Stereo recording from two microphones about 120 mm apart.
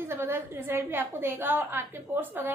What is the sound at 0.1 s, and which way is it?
A woman's voice, 20° right (ahead or behind).